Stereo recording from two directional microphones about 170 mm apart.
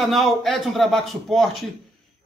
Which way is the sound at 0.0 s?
Centre (ahead or behind).